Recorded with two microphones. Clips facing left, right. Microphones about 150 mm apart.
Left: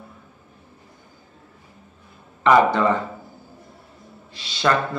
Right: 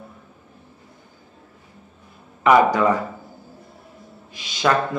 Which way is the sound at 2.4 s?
10° right (ahead or behind).